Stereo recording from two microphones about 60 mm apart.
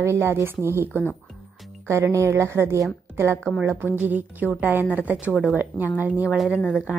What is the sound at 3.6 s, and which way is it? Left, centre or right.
A woman's voice, right.